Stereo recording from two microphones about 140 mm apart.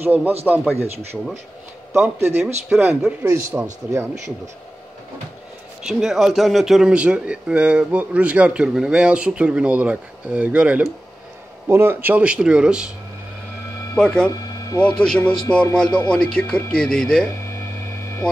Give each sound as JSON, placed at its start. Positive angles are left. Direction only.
{"t": 0.0, "sound": "speech", "side_deg": -15}
{"t": 2.0, "sound": "speech", "side_deg": -15}
{"t": 5.9, "sound": "speech", "side_deg": -5}
{"t": 13.9, "sound": "speech", "side_deg": 5}